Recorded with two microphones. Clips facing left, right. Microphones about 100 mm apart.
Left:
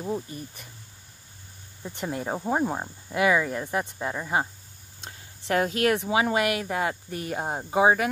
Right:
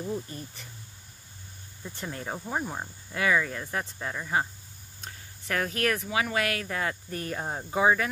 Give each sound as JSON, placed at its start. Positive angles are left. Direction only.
{"t": 1.8, "sound": "speech", "side_deg": 20}
{"t": 5.5, "sound": "speech", "side_deg": 20}
{"t": 7.4, "sound": "speech", "side_deg": 25}